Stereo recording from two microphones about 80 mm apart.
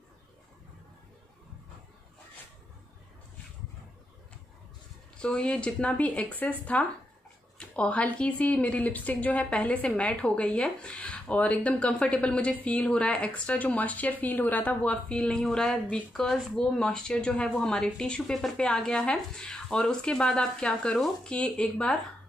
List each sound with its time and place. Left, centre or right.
5.1 s speech: centre